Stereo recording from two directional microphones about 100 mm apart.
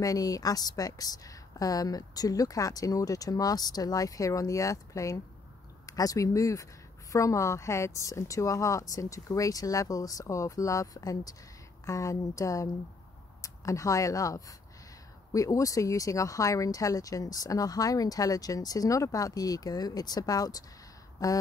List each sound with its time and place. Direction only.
0.0 s speech: 35° left (ahead or behind)